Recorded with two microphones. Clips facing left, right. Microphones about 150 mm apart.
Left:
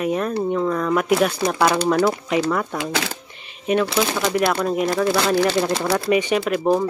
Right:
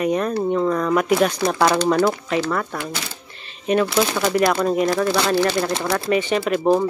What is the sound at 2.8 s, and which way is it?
Speech, 90° left.